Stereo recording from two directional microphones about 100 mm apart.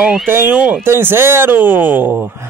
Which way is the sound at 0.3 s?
20° right (ahead or behind).